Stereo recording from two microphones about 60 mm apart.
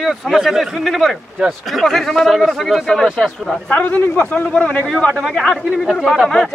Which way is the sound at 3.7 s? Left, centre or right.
Left.